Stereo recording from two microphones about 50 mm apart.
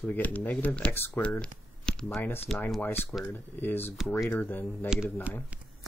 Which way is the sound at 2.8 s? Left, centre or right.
Left.